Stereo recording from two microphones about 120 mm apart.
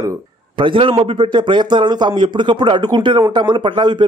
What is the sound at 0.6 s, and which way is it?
A man's voice, 45° right (ahead or behind).